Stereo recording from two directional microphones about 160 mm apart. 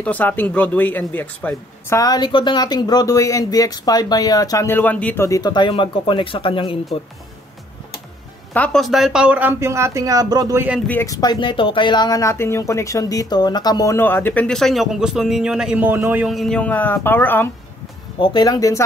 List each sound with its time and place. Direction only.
0.0 s speech: 10° left (ahead or behind); by 6.8 s 35° left (ahead or behind)
8.5 s speech: 5° left (ahead or behind); by 10.7 s 20° right (ahead or behind)
10.9 s speech: 20° left (ahead or behind); by 16.3 s 10° right (ahead or behind)
16.3 s speech: centre (ahead or behind)
18.2 s speech: 25° left (ahead or behind)